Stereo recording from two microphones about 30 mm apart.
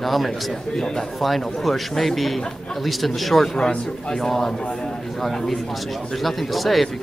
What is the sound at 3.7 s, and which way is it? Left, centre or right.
Speech, left.